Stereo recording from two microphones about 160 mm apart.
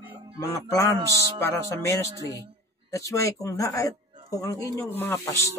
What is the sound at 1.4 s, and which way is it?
A man's voice, 20° left (ahead or behind).